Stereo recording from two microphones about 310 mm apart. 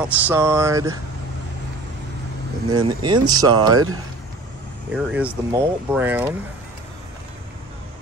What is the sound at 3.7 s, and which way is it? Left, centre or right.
Speech, right.